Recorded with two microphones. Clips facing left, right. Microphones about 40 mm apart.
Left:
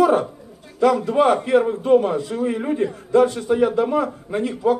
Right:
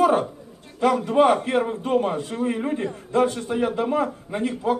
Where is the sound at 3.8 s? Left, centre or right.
Right.